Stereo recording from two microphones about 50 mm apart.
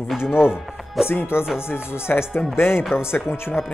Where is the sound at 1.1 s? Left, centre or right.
Left.